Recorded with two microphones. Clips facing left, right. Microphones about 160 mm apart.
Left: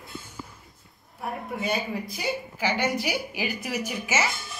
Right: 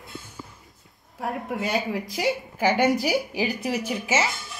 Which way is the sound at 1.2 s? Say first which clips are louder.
Right 3 dB; 90° right.